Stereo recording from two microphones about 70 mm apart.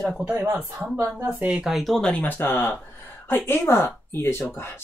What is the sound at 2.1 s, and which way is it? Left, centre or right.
Speech, left.